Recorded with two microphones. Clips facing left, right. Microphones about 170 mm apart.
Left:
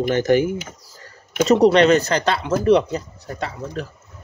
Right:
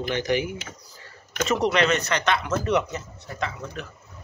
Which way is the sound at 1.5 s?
35° left (ahead or behind).